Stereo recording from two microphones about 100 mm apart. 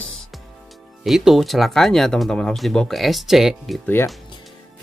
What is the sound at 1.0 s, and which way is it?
Speech, centre (ahead or behind).